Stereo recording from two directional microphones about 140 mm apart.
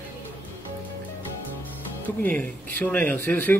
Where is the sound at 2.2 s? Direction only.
10° left (ahead or behind).